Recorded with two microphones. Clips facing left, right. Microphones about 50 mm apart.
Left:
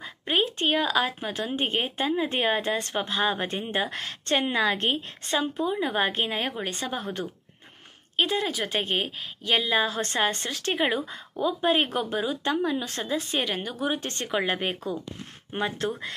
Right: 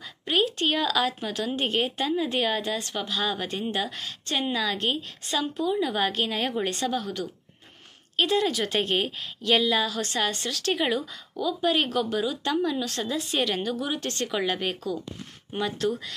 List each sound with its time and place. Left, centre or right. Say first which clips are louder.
0.0 s a woman's voice: right 1 dB; left
6.4 s speech: right 3 dB; centre
6.7 s a woman's voice: right 3 dB; left
8.2 s a woman's voice: right 2 dB; centre